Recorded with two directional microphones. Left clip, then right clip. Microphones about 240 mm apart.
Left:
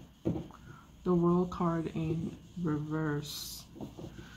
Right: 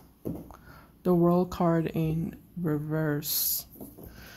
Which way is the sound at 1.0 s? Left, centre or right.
Right.